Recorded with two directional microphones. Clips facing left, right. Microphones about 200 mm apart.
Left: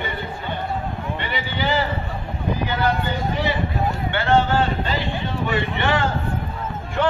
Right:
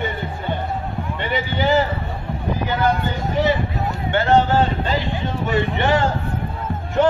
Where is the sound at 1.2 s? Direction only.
45° right (ahead or behind).